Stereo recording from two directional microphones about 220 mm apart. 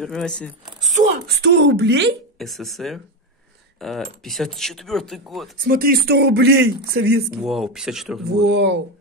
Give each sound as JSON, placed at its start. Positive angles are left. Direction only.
{"t": 0.0, "sound": "speech", "side_deg": 5}
{"t": 0.9, "sound": "a sound", "side_deg": -40}
{"t": 2.3, "sound": "speech", "side_deg": 0}
{"t": 5.6, "sound": "a man's voice", "side_deg": -40}
{"t": 7.4, "sound": "speech", "side_deg": 0}
{"t": 8.5, "sound": "a man's voice", "side_deg": -50}